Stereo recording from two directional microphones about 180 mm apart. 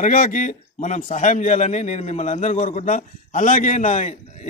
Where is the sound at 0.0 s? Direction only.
45° left (ahead or behind).